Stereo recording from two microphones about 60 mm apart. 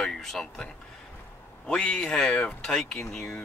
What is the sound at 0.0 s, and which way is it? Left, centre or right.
Speech, centre.